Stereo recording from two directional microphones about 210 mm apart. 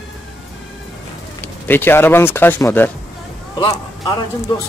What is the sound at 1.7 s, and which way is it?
Speech, 10° left (ahead or behind).